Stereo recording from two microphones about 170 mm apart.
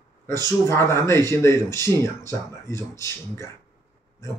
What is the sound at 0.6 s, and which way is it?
A man's voice, 15° left (ahead or behind).